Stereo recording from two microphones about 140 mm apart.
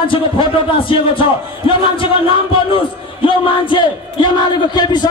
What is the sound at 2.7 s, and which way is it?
A man's voice, 40° left (ahead or behind).